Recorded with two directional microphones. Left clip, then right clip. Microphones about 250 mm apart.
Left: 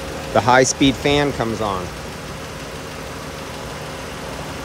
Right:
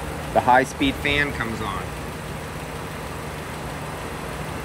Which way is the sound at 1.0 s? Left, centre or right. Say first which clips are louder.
Left 2 dB; centre.